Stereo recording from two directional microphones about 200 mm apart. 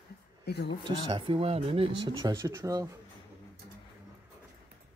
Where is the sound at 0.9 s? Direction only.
25° right (ahead or behind).